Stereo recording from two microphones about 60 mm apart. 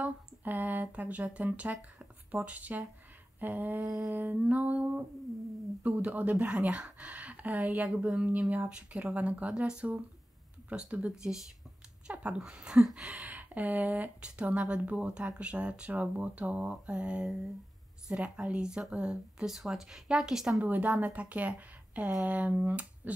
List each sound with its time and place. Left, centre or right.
0.0 s speech: right
3.3 s a sound: right
4.4 s speech: right
11.2 s speech: centre
12.1 s speech: right
13.2 s speech: right
19.4 s speech: centre
20.6 s speech: right